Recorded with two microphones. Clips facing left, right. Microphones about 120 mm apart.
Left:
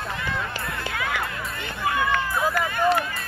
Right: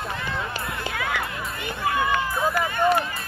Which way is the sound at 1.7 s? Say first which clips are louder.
Right 1 dB; 20° right (ahead or behind).